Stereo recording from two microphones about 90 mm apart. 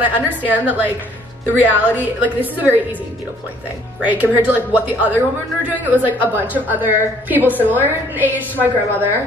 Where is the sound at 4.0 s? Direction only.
15° right (ahead or behind).